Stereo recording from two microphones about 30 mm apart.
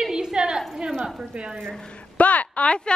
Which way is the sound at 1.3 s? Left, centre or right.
Right.